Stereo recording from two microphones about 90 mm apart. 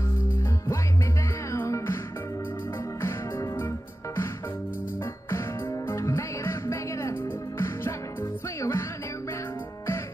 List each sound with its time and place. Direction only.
1.5 s music: 30° left (ahead or behind)
3.0 s music: 30° left (ahead or behind)
5.3 s music: 30° left (ahead or behind)